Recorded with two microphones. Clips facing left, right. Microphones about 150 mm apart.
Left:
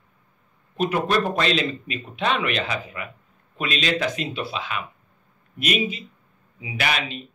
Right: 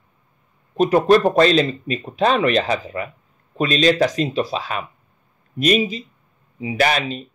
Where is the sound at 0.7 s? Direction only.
35° right (ahead or behind).